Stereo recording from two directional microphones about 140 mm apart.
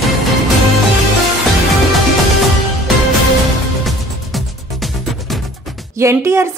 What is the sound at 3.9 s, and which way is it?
Music, centre (ahead or behind).